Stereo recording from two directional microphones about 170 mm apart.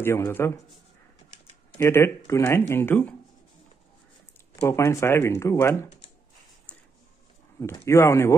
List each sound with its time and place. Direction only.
0.0 s speech: 15° left (ahead or behind)
1.8 s speech: 15° left (ahead or behind)
4.6 s speech: 15° left (ahead or behind)
7.6 s speech: 15° left (ahead or behind)